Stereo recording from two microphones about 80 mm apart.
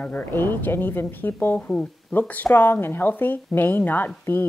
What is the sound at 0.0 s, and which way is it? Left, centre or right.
Speech, left.